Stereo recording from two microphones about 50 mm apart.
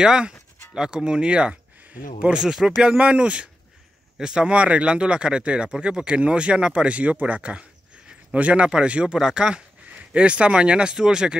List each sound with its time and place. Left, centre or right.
0.0 s speech: centre